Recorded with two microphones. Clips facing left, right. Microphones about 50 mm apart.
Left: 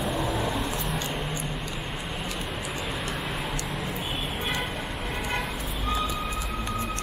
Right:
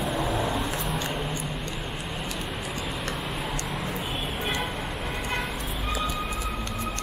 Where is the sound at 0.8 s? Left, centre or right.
Centre.